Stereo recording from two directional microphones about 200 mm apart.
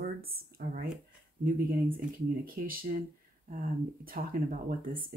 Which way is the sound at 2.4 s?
45° right (ahead or behind).